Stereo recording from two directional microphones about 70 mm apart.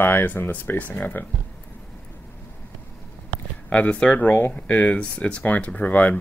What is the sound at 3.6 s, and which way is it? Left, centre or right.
Speech, centre.